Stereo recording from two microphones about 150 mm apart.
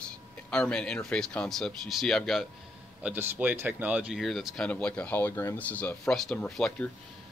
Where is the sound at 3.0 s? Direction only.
10° right (ahead or behind).